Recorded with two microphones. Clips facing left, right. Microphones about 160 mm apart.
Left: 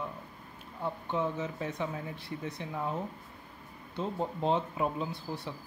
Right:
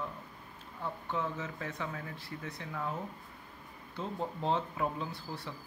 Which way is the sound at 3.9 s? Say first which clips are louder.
Left 4 dB; 20° left (ahead or behind).